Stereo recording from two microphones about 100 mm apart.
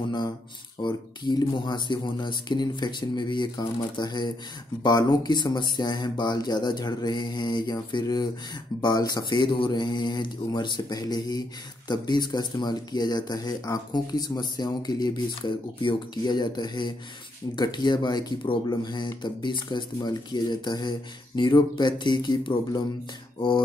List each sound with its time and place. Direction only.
0.8 s speech: 45° left (ahead or behind)